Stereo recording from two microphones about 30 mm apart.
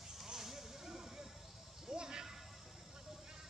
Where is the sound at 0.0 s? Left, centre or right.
Centre.